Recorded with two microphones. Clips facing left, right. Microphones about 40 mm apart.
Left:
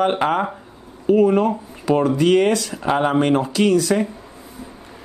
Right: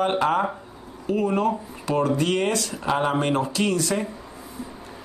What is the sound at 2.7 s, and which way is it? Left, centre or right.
Speech, centre.